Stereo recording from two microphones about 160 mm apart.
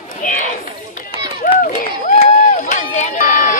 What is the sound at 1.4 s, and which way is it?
Run, 60° left (ahead or behind).